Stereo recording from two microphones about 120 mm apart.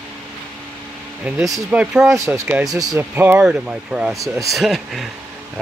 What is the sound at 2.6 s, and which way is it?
Speech, 30° right (ahead or behind).